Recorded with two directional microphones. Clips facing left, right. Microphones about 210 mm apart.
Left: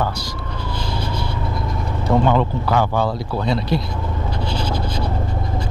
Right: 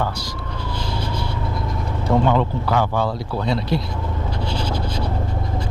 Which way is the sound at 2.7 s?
15° left (ahead or behind).